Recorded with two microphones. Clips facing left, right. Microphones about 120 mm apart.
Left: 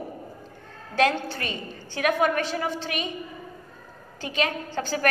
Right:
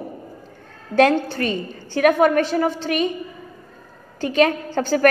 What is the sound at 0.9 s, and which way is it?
A woman's voice, 45° right (ahead or behind).